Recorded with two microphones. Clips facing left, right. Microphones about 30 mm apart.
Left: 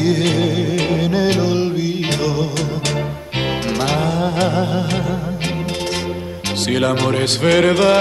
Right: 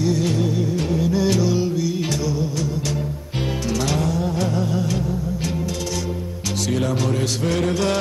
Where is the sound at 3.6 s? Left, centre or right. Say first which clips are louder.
Left 2 dB; left.